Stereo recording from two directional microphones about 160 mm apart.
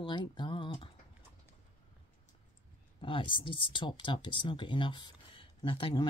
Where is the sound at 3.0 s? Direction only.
35° left (ahead or behind).